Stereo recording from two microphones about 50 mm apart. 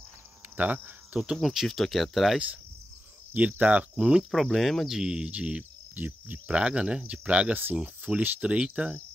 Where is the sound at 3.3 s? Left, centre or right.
Right.